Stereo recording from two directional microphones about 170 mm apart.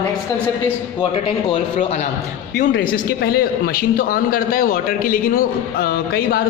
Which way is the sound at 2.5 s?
50° left (ahead or behind).